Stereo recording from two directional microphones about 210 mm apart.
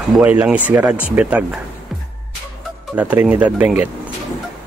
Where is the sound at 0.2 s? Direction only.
5° right (ahead or behind).